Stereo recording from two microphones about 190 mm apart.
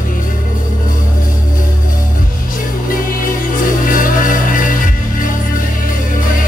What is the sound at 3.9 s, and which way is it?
Music, 45° left (ahead or behind).